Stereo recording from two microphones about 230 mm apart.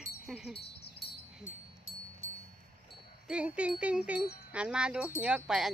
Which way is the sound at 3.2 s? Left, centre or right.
Centre.